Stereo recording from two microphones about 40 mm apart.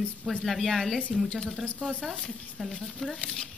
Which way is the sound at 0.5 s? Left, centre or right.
Centre.